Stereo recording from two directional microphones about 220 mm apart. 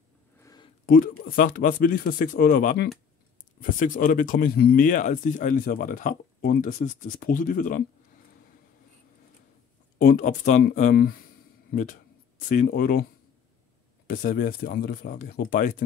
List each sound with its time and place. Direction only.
0.4 s a sound: 15° left (ahead or behind)
0.8 s speech: 40° left (ahead or behind)
9.9 s speech: 35° left (ahead or behind)
14.0 s speech: 40° left (ahead or behind)